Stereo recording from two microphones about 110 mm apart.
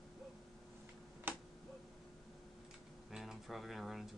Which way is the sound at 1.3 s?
20° right (ahead or behind).